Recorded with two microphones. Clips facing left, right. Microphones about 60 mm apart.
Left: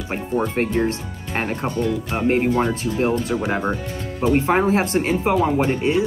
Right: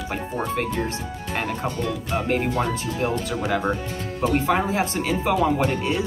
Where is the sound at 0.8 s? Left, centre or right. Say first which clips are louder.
Left 6 dB; left.